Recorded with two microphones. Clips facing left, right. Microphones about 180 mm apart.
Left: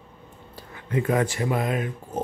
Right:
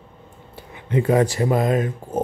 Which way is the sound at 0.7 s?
30° right (ahead or behind).